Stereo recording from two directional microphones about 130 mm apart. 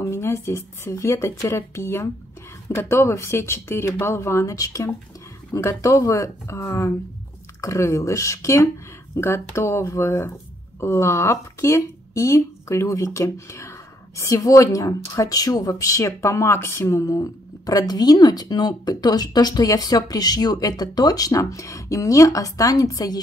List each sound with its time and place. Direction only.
0.0 s speech: 20° left (ahead or behind)